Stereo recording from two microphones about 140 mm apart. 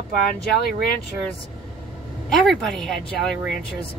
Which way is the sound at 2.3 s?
5° left (ahead or behind).